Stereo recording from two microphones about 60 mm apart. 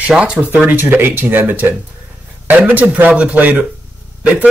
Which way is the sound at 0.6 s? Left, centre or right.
Right.